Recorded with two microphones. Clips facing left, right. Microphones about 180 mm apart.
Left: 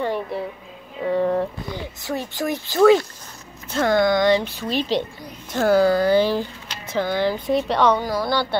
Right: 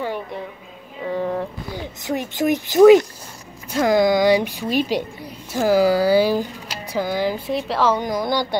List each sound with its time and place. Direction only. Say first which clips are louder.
0.0 s speech: left 2 dB; centre (ahead or behind)
1.0 s vehicle: left 3 dB; centre (ahead or behind)
1.8 s speech: right 3 dB; 20° right (ahead or behind); by 8.0 s centre (ahead or behind)
8.0 s speech: right 1 dB; 20° right (ahead or behind)